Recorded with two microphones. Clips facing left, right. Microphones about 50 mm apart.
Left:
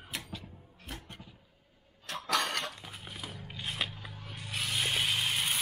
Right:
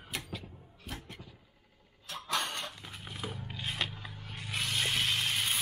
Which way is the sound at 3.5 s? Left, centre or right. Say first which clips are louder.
Left 1 dB; centre.